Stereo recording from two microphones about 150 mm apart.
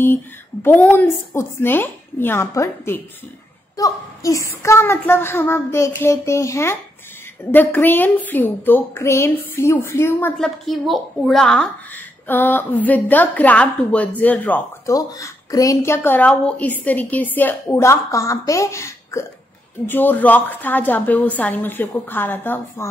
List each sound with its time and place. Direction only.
0.0 s a woman's voice: 15° left (ahead or behind)
10.3 s a woman's voice: 5° left (ahead or behind)
14.9 s a woman's voice: 20° left (ahead or behind)